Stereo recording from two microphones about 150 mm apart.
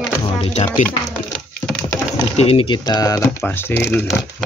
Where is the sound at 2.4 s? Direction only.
40° left (ahead or behind).